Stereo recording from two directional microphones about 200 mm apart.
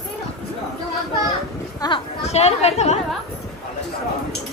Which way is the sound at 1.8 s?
20° left (ahead or behind).